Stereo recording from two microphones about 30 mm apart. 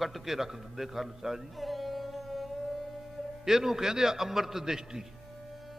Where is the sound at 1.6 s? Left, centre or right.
Centre.